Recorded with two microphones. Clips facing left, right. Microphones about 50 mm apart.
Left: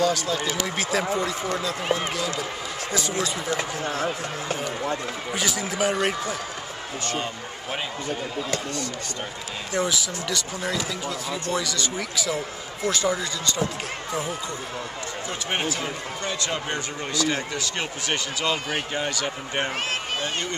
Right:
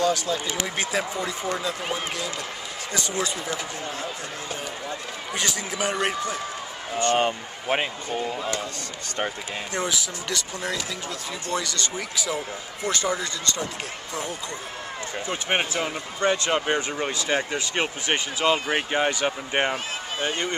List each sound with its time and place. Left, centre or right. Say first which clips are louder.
0.0 s speech: left 1 dB; centre
3.5 s speech: left 4 dB; left
5.3 s speech: even; centre
7.1 s speech: right 8 dB; right
9.8 s speech: left 3 dB; centre
15.2 s speech: right 2 dB; right